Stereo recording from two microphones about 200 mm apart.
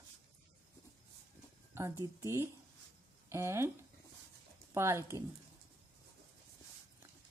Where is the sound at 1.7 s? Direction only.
15° right (ahead or behind).